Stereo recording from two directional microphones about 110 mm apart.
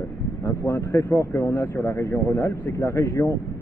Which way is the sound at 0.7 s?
25° left (ahead or behind).